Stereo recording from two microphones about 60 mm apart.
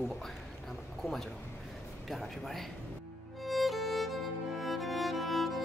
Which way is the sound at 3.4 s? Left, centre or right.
Centre.